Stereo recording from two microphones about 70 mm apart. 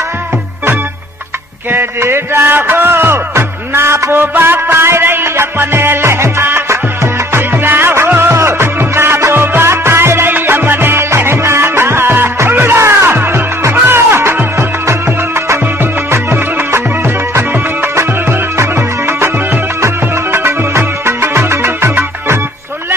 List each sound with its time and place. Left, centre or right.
1.7 s music: right
18.6 s music: right